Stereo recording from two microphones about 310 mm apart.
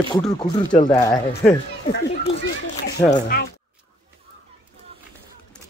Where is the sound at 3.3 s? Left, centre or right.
Left.